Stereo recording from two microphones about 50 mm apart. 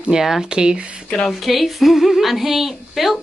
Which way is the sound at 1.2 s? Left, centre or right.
Centre.